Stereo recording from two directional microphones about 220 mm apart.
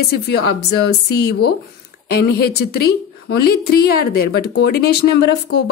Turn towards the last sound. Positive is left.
turn(degrees=50)  # may be behind; listen again after turning